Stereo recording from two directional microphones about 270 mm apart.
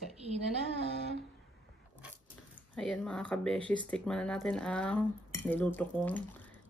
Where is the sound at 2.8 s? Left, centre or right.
Centre.